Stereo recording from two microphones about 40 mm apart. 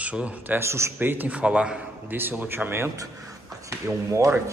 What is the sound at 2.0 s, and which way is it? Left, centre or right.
Speech, right.